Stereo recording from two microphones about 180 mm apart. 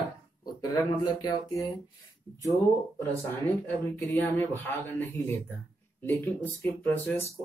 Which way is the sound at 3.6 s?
10° left (ahead or behind).